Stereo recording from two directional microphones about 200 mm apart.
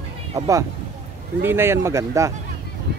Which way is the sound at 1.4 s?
10° right (ahead or behind).